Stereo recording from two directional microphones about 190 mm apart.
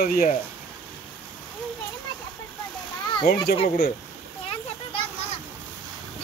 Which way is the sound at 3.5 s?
30° left (ahead or behind).